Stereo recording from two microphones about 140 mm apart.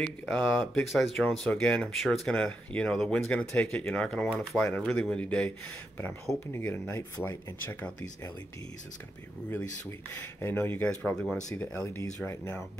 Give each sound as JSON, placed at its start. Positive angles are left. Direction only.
{"t": 0.0, "sound": "speech", "side_deg": 5}
{"t": 6.5, "sound": "speech", "side_deg": 15}
{"t": 9.5, "sound": "speech", "side_deg": 15}